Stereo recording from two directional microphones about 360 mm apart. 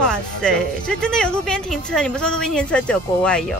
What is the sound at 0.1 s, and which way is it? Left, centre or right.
Speech, centre.